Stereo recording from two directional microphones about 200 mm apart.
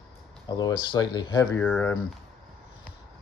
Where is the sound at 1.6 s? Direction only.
5° left (ahead or behind).